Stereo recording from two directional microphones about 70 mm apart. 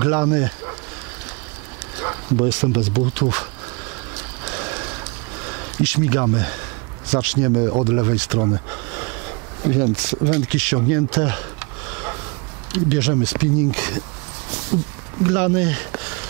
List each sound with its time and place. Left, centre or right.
0.0 s speech: centre
2.0 s speech: centre
4.5 s a sound: centre
5.9 s speech: centre
15.2 s speech: centre